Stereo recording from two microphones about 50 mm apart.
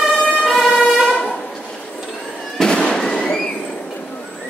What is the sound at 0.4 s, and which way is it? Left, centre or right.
Emergency vehicle, centre.